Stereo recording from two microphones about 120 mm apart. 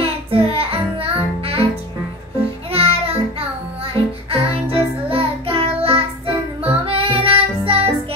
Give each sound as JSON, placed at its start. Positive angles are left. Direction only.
{"t": 0.0, "sound": "music", "side_deg": -50}
{"t": 2.7, "sound": "music", "side_deg": -55}
{"t": 4.3, "sound": "child singing", "side_deg": -50}
{"t": 6.9, "sound": "music", "side_deg": -50}